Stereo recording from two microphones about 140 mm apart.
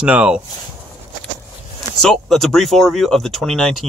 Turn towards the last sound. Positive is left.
turn(degrees=5)  # may be behind; listen again after turning